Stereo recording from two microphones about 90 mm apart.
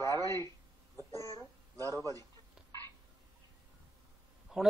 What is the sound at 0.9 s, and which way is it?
Babbling, 35° left (ahead or behind).